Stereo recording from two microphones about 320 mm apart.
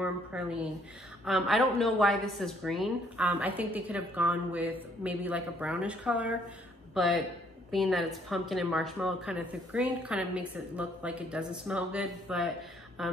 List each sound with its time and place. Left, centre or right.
0.0 s a woman's voice: centre